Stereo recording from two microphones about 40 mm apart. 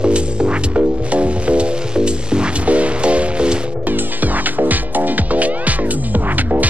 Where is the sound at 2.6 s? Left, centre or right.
Right.